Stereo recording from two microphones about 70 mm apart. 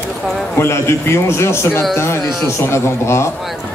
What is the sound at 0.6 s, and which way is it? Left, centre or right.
A man's voice, left.